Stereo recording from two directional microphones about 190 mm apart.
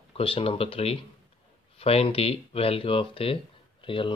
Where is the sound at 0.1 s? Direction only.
30° left (ahead or behind).